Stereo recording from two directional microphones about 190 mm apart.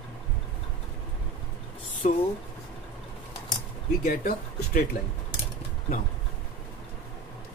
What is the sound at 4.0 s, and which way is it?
Speech, 45° left (ahead or behind).